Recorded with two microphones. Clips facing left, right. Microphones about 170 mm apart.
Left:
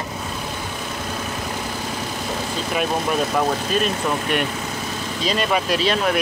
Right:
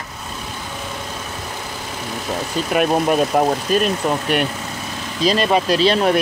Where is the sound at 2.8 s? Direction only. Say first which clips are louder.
Right 6 dB; 55° right (ahead or behind).